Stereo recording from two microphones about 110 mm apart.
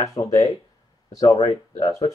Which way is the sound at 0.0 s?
30° left (ahead or behind).